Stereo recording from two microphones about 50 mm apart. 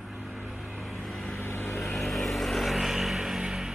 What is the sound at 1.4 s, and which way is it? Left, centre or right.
Vehicle, left.